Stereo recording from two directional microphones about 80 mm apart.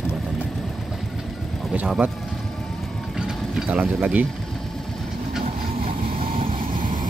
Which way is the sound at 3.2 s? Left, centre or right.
Centre.